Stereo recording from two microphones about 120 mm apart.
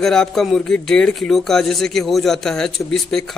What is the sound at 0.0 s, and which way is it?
A man's voice, 5° left (ahead or behind).